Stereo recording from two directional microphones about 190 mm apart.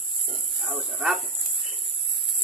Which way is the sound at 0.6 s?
5° right (ahead or behind).